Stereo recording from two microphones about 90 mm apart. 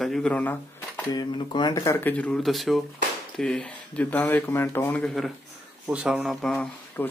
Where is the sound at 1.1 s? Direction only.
50° left (ahead or behind).